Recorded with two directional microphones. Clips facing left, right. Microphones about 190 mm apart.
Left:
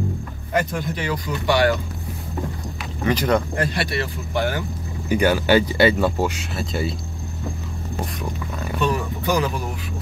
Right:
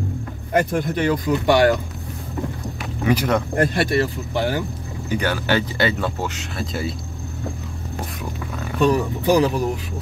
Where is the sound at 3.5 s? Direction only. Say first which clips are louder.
Right 5 dB; 50° right (ahead or behind).